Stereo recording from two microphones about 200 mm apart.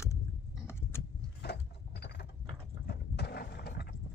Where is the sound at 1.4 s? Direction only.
55° left (ahead or behind).